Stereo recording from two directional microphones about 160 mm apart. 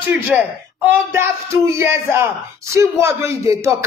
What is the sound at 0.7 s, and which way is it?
A woman's voice, 15° right (ahead or behind).